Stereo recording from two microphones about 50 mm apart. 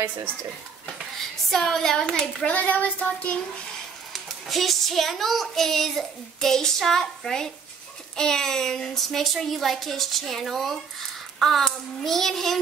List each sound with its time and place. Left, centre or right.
1.1 s speech: centre
2.4 s child singing: left
4.1 s a woman's voice: centre